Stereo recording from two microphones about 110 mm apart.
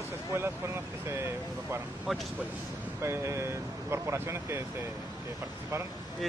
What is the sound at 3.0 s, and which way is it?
Speech, 25° right (ahead or behind).